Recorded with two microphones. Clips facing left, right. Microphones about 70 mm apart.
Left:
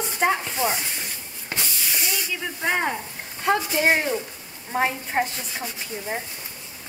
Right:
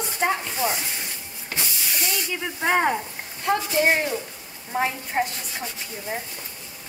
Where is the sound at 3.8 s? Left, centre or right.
Centre.